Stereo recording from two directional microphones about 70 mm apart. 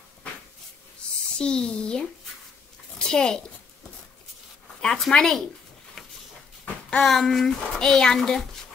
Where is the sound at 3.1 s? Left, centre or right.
Centre.